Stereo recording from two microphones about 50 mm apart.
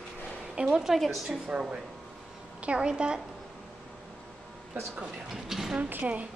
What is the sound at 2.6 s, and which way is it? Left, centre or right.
Speech, centre.